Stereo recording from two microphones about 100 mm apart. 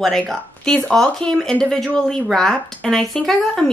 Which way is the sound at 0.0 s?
5° left (ahead or behind).